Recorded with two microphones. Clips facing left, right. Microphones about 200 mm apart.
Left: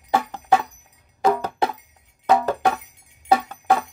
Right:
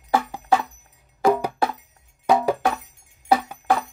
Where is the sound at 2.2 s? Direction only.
10° right (ahead or behind).